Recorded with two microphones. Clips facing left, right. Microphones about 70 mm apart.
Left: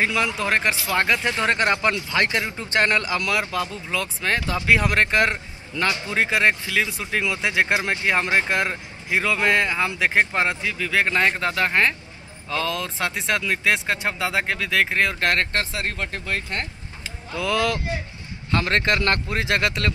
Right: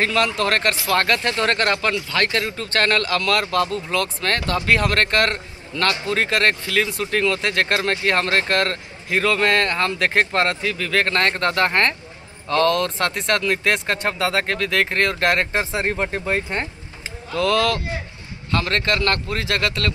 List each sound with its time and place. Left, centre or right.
0.0 s a man's voice: centre
15.6 s speech: right
17.3 s a man's voice: centre